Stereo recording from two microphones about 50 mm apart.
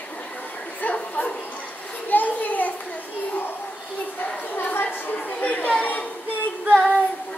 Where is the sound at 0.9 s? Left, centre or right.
Left.